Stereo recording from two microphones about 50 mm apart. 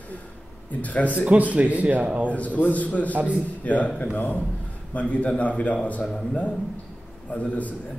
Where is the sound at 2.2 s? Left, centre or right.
Left.